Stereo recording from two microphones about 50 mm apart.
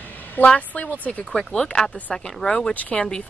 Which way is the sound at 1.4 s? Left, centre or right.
Centre.